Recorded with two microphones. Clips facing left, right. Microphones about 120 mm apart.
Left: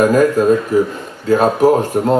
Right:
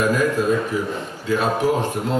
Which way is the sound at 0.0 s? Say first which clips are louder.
Left 8 dB; 45° left (ahead or behind).